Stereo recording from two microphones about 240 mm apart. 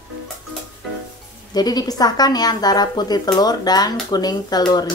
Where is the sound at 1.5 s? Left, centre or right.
Centre.